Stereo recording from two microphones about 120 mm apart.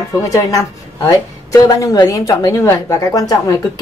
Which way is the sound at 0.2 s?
25° left (ahead or behind).